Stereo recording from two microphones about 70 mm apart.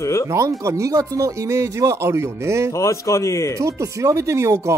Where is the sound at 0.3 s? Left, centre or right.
Right.